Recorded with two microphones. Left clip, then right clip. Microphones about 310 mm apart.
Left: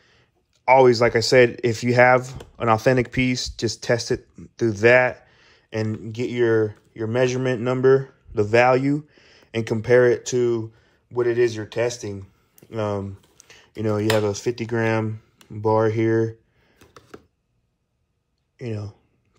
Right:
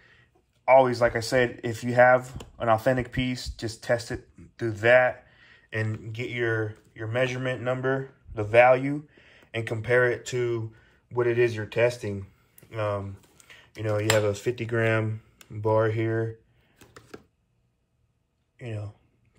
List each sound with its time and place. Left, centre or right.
0.0 s a sound: centre
0.8 s speech: left
16.8 s chopping: centre
18.6 s speech: centre